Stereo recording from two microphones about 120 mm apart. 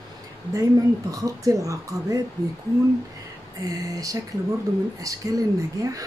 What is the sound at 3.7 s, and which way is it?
Speech, 30° right (ahead or behind).